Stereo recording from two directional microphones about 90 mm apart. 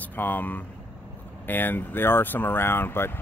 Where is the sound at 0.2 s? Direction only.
20° left (ahead or behind).